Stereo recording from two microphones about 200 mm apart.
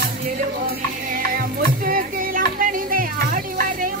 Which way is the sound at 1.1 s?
45° right (ahead or behind).